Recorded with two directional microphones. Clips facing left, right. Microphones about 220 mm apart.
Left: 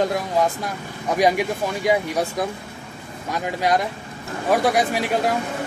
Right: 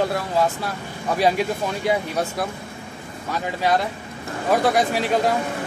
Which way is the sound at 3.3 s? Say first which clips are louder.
Even; 10° left (ahead or behind).